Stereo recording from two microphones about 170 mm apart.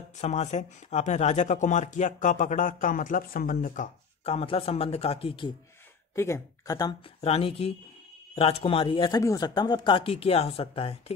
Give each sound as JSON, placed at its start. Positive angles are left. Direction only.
{"t": 0.2, "sound": "speech", "side_deg": 40}
{"t": 6.1, "sound": "speech", "side_deg": 15}
{"t": 7.2, "sound": "speech", "side_deg": 35}